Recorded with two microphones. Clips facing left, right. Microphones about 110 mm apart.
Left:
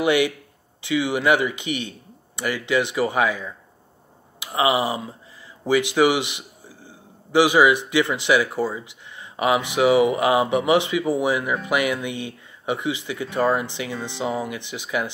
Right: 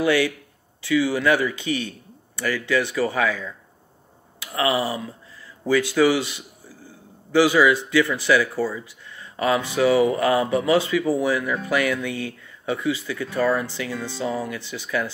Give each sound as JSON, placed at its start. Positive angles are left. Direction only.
{"t": 0.0, "sound": "speech", "side_deg": 20}
{"t": 4.6, "sound": "a man's voice", "side_deg": 20}